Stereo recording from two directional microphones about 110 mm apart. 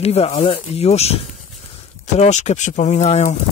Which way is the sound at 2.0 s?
90° left.